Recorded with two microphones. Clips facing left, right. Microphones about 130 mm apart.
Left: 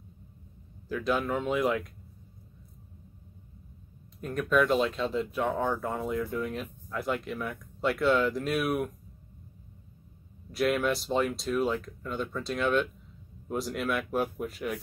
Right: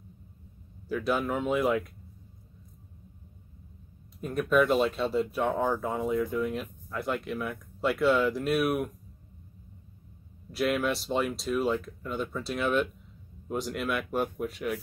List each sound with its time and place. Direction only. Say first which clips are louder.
0.8 s speech: right 1 dB; 5° right (ahead or behind)
4.2 s speech: right 1 dB; 5° right (ahead or behind)
10.5 s speech: left 1 dB; centre (ahead or behind)